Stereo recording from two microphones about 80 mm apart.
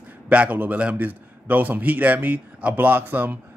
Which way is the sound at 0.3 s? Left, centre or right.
Centre.